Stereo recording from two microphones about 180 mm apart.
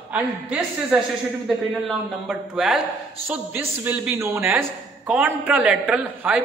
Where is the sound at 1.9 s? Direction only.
5° right (ahead or behind).